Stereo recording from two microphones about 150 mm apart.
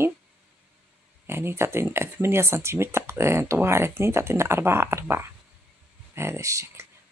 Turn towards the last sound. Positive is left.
turn(degrees=-20)  # may be behind; listen again after turning